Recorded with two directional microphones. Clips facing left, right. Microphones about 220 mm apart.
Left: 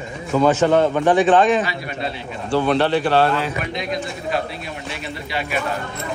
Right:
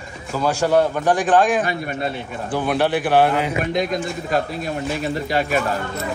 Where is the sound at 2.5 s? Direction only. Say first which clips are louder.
Left 2 dB; 10° right (ahead or behind).